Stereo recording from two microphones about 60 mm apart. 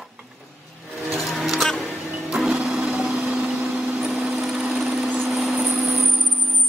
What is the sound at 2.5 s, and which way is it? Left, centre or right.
Vehicle, centre.